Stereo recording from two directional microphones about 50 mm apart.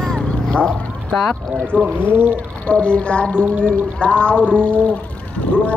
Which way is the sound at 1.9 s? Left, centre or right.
Right.